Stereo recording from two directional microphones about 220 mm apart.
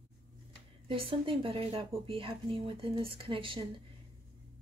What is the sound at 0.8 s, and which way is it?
A woman's voice, 25° right (ahead or behind).